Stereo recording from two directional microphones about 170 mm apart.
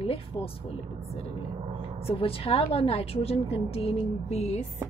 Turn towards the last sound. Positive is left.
turn(degrees=40)  # may be behind; listen again after turning